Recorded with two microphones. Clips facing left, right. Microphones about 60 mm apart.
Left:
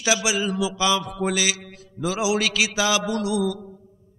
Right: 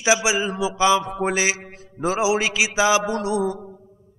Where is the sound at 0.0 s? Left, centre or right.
Right.